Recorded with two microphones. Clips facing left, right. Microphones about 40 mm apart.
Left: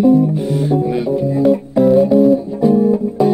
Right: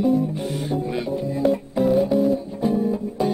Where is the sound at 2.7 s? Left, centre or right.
Centre.